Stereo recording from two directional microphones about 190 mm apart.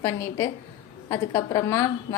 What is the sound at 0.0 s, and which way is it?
A woman's voice, 15° left (ahead or behind).